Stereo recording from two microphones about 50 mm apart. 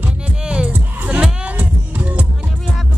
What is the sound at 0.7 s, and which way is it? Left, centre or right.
Music, right.